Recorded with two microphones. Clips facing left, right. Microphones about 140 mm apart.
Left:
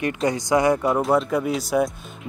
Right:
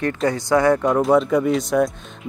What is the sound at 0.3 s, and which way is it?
Speech, 15° left (ahead or behind).